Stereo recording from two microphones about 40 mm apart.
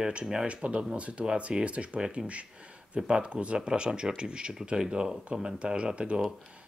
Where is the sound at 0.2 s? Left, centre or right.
Centre.